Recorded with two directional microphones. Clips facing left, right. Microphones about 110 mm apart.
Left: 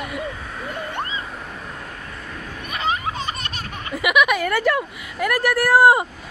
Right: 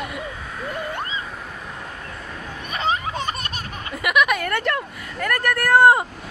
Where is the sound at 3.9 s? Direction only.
5° left (ahead or behind).